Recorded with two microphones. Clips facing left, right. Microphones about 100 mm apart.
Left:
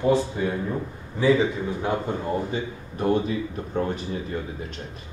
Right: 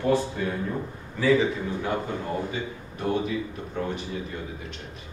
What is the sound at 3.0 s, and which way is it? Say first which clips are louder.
A man's voice: left 4 dB; 30° left (ahead or behind).